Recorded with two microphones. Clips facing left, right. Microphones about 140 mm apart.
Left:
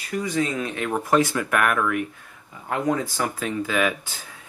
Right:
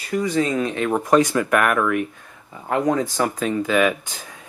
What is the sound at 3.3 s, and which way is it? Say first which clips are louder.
Speech: right 5 dB; 20° right (ahead or behind).